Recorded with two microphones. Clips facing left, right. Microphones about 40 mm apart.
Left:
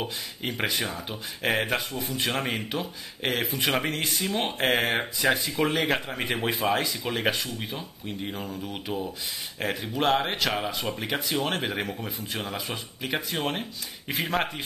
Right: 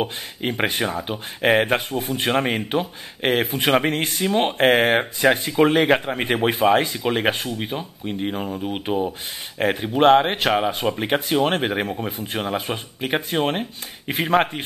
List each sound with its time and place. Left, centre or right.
0.0 s speech: right